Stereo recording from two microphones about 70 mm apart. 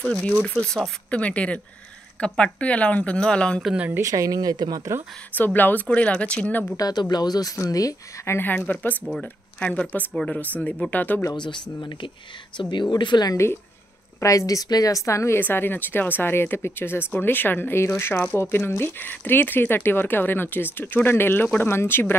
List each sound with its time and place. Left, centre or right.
0.0 s speech: centre
1.1 s speech: centre
4.0 s speech: right
5.3 s speech: left
6.8 s speech: left
8.3 s speech: left
10.1 s speech: centre
12.5 s speech: left
14.2 s a woman's voice: left
15.3 s speech: left